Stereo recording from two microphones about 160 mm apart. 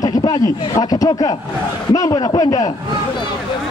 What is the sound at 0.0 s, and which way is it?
A man's voice, 25° left (ahead or behind).